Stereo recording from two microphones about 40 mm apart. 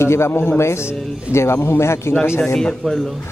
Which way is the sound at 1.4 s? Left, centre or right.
Left.